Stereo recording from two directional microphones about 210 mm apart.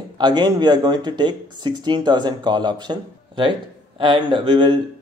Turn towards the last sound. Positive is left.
turn(degrees=-25)  # may be behind; listen again after turning